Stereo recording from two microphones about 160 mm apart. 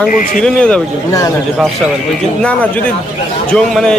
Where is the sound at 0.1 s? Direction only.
55° left (ahead or behind).